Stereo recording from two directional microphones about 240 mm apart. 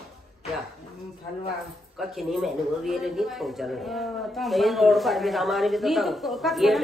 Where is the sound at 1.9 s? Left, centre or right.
Centre.